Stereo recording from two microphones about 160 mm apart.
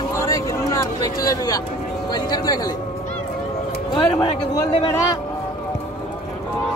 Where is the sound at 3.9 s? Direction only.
30° left (ahead or behind).